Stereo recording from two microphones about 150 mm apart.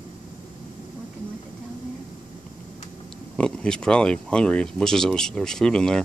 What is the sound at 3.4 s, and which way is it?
Speech, 5° left (ahead or behind).